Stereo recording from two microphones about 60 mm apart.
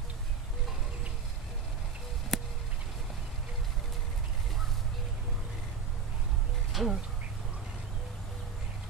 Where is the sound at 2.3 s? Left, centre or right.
Centre.